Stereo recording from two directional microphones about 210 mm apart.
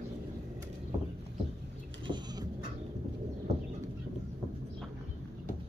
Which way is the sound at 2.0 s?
20° right (ahead or behind).